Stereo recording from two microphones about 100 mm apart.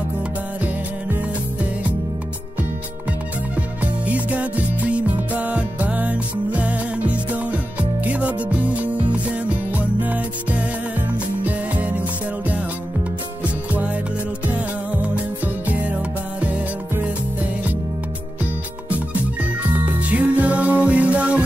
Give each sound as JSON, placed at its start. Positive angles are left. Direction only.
{"t": 0.7, "sound": "music", "side_deg": -15}
{"t": 3.5, "sound": "music", "side_deg": -15}
{"t": 20.0, "sound": "music", "side_deg": -15}